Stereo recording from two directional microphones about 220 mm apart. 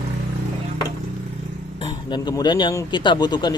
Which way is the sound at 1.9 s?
20° left (ahead or behind).